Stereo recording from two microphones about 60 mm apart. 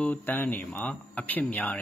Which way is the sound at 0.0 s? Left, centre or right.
Left.